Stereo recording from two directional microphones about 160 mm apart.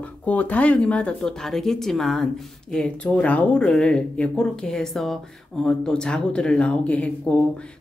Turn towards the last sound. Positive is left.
turn(degrees=10)  # may be behind; listen again after turning